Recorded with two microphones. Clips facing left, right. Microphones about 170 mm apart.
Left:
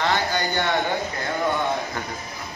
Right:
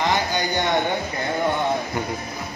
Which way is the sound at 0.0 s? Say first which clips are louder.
Right 1 dB; 15° right (ahead or behind).